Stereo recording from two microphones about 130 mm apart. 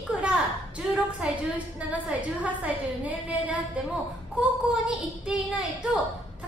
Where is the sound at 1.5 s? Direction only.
10° right (ahead or behind).